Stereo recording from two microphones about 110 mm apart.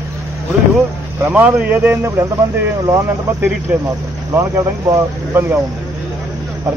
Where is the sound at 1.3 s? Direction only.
15° right (ahead or behind).